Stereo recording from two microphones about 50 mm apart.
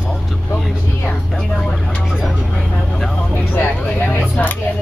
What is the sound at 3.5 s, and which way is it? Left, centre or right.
Vehicle, left.